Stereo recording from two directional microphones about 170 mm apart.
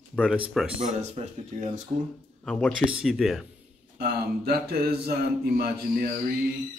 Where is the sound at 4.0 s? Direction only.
70° right (ahead or behind).